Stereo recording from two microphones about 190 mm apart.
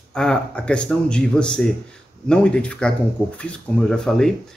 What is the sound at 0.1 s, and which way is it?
Speech, 5° left (ahead or behind).